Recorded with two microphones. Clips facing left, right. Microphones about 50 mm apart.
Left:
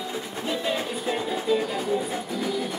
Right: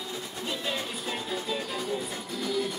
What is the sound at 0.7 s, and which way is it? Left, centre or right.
Music, centre.